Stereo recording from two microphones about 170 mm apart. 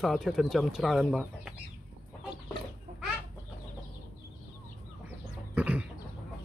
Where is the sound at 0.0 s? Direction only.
Centre (ahead or behind).